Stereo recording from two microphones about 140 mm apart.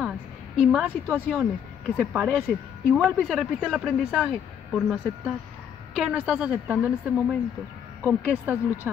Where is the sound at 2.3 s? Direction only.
5° left (ahead or behind).